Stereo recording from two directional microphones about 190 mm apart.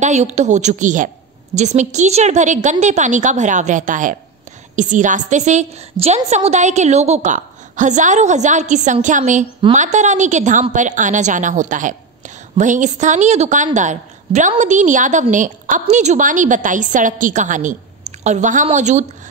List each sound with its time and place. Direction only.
0.0 s a woman's voice: 35° right (ahead or behind)